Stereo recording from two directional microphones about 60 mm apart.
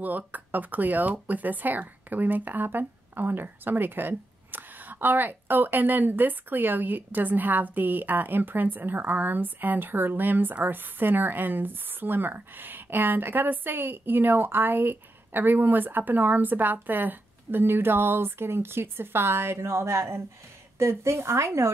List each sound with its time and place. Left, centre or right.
0.0 s a woman's voice: right